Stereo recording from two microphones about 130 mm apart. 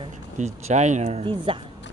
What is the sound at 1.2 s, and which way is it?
Speech, 45° right (ahead or behind).